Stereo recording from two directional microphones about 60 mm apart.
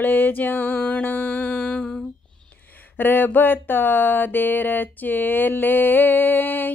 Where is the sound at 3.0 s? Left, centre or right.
Left.